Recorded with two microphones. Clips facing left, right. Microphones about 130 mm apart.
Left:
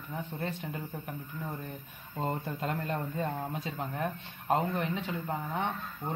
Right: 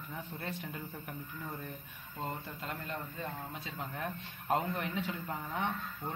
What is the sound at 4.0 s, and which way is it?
Speech, 30° left (ahead or behind).